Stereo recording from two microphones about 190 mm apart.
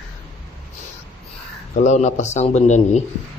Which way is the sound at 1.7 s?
40° left (ahead or behind).